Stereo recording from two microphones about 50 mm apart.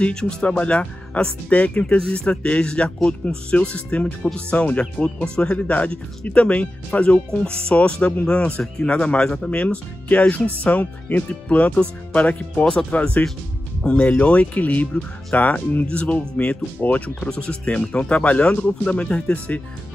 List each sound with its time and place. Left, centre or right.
0.1 s speech: centre